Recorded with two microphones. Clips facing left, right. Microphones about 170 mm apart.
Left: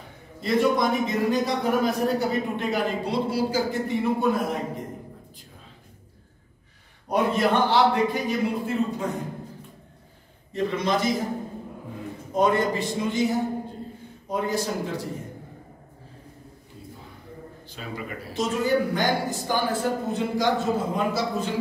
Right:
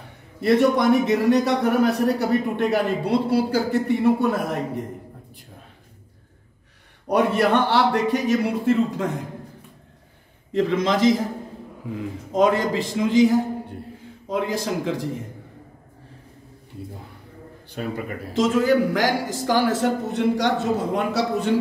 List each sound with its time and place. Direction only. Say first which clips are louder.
0.4 s a man's voice: right 4 dB; 70° right (ahead or behind)
7.1 s a man's voice: right 3 dB; 70° right (ahead or behind); by 9.0 s 90° right
10.5 s a man's voice: right 4 dB; 90° right
12.3 s a man's voice: right 3 dB; 90° right
17.6 s a man's voice: right 8 dB; 55° right (ahead or behind)
18.3 s a man's voice: right 5 dB; 90° right; by 21.5 s 70° right (ahead or behind)